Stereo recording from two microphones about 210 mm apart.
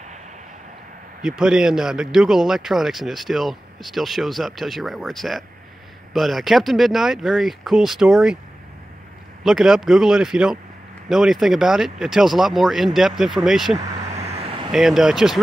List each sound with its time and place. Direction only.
1.2 s speech: centre (ahead or behind)
9.4 s speech: centre (ahead or behind)
13.7 s vehicle: 30° right (ahead or behind)
14.7 s speech: centre (ahead or behind)